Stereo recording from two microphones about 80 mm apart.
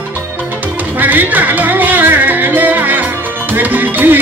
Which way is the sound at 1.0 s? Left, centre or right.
Right.